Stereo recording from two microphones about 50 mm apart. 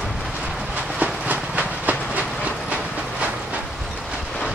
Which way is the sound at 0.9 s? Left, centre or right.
Right.